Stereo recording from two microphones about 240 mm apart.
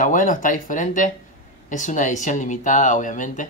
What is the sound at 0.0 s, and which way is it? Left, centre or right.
Speech, left.